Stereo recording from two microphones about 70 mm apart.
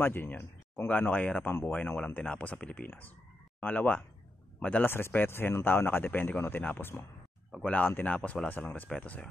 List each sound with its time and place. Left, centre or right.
0.0 s speech: left
0.8 s speech: left
4.9 s speech: left